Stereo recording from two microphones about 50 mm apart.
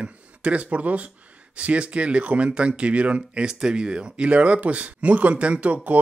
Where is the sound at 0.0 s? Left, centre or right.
Right.